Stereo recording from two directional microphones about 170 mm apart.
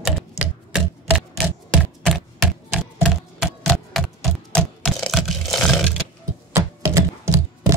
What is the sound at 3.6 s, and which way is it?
Typewriter, centre (ahead or behind).